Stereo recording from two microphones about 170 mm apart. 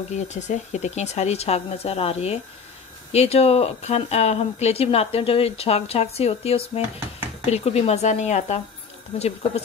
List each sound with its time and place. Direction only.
0.1 s speech: 45° left (ahead or behind)